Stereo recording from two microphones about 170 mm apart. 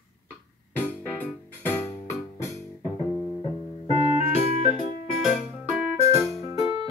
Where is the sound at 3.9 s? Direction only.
35° left (ahead or behind).